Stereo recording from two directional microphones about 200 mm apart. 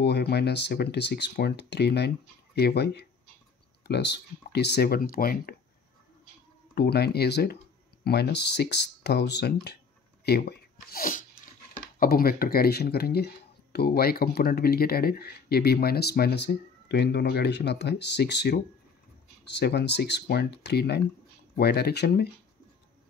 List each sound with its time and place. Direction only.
0.0 s speech: 55° left (ahead or behind)
6.7 s speech: 55° left (ahead or behind)